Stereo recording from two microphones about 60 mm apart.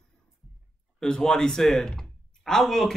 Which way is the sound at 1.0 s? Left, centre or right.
Centre.